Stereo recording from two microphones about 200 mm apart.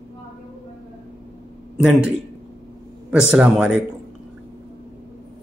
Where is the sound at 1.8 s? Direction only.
5° right (ahead or behind).